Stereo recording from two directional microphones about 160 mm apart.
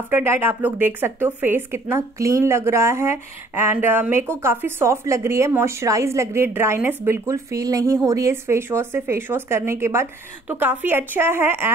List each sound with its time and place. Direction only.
0.1 s a woman's voice: 15° right (ahead or behind)